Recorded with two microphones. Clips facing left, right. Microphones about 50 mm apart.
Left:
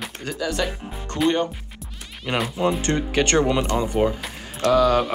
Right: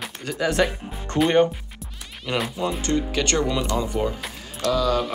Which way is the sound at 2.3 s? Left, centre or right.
Left.